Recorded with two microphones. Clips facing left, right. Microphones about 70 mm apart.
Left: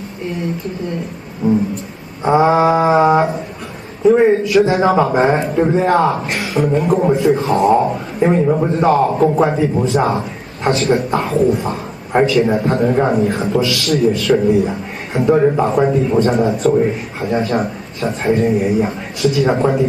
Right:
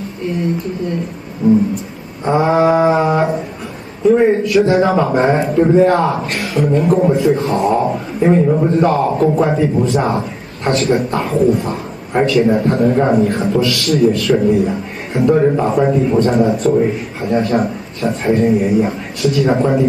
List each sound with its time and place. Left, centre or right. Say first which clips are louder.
2.2 s mantra: left 1 dB; centre
4.1 s a man's voice: even; centre